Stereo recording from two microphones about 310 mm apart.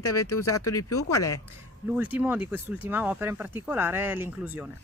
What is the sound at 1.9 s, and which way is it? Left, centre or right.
Speech, centre.